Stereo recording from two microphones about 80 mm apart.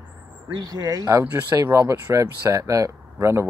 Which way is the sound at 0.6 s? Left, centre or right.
Right.